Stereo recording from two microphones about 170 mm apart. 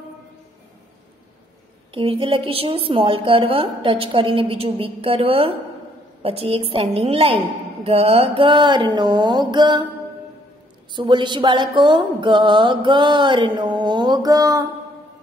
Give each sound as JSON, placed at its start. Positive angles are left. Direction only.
{"t": 2.0, "sound": "a woman's voice", "side_deg": -30}
{"t": 10.9, "sound": "music", "side_deg": -25}